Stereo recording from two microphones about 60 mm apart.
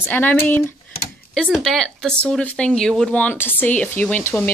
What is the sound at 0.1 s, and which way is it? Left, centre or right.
Speech, left.